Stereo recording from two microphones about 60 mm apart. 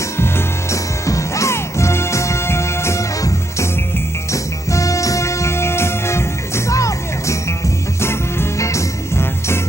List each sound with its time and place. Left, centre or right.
0.2 s music: left
8.0 s music: left